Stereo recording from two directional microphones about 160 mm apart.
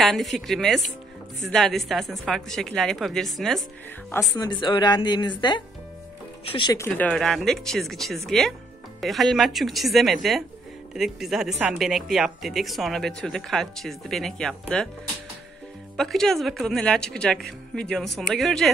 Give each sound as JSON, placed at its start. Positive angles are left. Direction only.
{"t": 0.0, "sound": "a woman's voice", "side_deg": 0}
{"t": 4.3, "sound": "speech", "side_deg": 25}
{"t": 6.7, "sound": "speech", "side_deg": 15}
{"t": 7.1, "sound": "a woman's voice", "side_deg": 0}
{"t": 16.0, "sound": "a woman's voice", "side_deg": 5}